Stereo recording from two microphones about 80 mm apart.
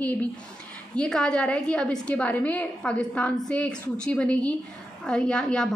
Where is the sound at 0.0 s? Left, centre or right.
Centre.